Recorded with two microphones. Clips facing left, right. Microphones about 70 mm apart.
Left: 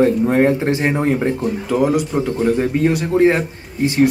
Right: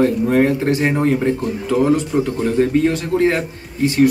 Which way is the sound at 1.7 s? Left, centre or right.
Centre.